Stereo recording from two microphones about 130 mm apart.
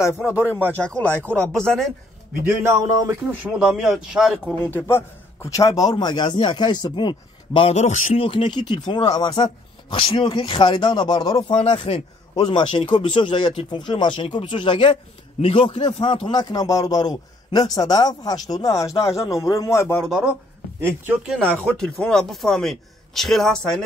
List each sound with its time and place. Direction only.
0.4 s speech: 15° right (ahead or behind)
0.8 s speech: 10° left (ahead or behind)
2.4 s speech: 20° right (ahead or behind)
3.4 s speech: 5° right (ahead or behind)
4.6 s speech: 15° left (ahead or behind); by 7.7 s 40° left (ahead or behind)
7.7 s a man's voice: 65° left (ahead or behind)
8.2 s speech: 40° left (ahead or behind)
11.7 s speech: 45° left (ahead or behind); by 20.0 s 20° left (ahead or behind)
20.1 s speech: 5° right (ahead or behind)